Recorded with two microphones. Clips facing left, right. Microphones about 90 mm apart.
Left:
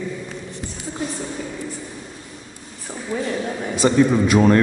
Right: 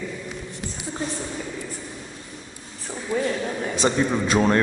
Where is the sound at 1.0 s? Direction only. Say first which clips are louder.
Left 2 dB; 35° right (ahead or behind).